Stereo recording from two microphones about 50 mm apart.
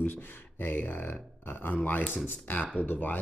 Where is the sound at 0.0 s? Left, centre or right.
Left.